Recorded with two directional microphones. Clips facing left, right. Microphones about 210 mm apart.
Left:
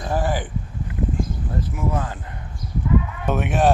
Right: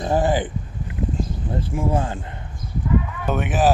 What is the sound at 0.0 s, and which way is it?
Speech, 25° right (ahead or behind).